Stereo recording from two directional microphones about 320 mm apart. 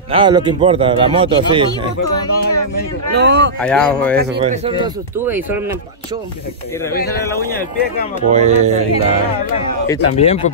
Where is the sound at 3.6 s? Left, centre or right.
Centre.